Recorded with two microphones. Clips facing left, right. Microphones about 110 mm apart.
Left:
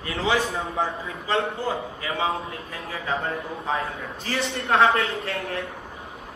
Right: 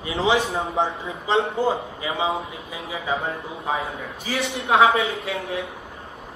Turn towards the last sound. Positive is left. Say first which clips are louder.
# right 2 dB
turn(degrees=-5)  # may be behind; listen again after turning